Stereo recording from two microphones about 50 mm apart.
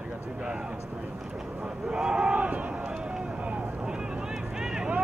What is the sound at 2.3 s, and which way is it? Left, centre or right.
Speech, right.